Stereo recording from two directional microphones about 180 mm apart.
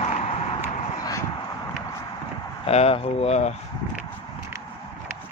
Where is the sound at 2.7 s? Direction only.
35° left (ahead or behind).